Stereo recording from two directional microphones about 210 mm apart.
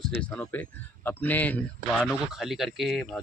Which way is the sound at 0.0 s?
5° left (ahead or behind).